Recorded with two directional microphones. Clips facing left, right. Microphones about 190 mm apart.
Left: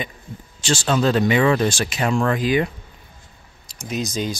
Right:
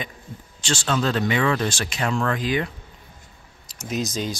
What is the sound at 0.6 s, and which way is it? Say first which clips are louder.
Speech: left 4 dB; 10° left (ahead or behind).